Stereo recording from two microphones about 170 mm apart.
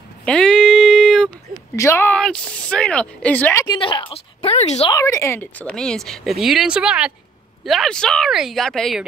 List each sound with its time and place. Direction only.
0.2 s a sound: 5° left (ahead or behind)
1.8 s speech: 15° left (ahead or behind)
3.6 s a woman's voice: 30° left (ahead or behind)
4.9 s speech: 15° left (ahead or behind)